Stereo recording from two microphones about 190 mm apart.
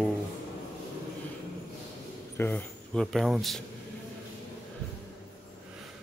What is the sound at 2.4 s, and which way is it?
Speech, 10° left (ahead or behind).